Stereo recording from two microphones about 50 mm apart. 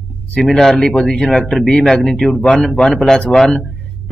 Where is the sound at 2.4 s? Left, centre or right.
Centre.